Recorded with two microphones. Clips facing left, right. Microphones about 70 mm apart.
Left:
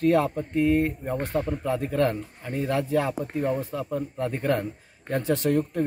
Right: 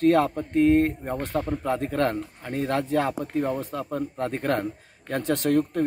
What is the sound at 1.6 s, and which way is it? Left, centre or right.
Speech, right.